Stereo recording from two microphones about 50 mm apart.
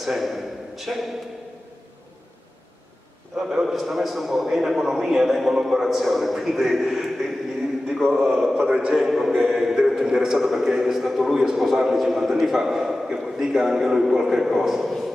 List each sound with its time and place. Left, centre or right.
0.0 s a man's voice: centre
3.3 s a man's voice: centre
8.5 s a man's voice: right; by 15.0 s centre